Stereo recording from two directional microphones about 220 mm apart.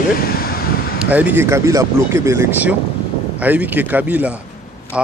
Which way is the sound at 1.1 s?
5° right (ahead or behind).